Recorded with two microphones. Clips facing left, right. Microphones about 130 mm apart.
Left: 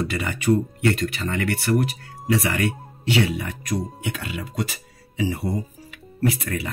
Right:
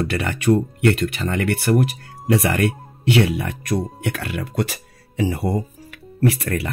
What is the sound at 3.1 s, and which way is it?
Speech, 65° right (ahead or behind).